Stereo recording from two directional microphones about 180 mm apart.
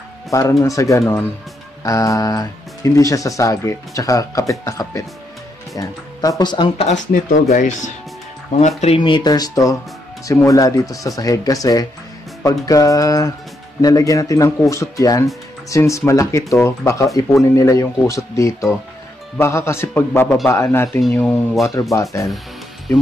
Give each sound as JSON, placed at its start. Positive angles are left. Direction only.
{"t": 0.3, "sound": "speech", "side_deg": 20}
{"t": 7.1, "sound": "speech", "side_deg": 50}